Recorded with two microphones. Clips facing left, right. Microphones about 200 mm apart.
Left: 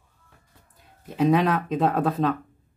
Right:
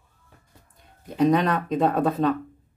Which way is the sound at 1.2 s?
5° left (ahead or behind).